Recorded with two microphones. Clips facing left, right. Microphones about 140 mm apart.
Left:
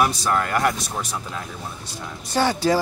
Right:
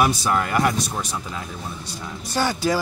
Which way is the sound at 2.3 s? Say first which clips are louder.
Left 2 dB; 25° left (ahead or behind).